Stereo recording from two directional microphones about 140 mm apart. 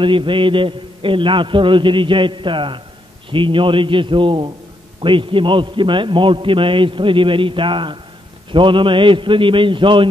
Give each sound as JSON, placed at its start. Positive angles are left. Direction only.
{"t": 0.0, "sound": "a man's voice", "side_deg": -35}